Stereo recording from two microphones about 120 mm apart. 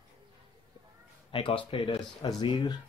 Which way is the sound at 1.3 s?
50° left (ahead or behind).